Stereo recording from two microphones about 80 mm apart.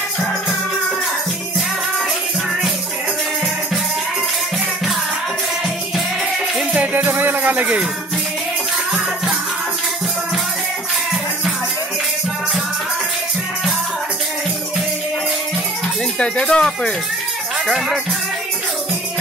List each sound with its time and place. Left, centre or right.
6.7 s music: centre
16.2 s speech: centre
17.6 s speech: centre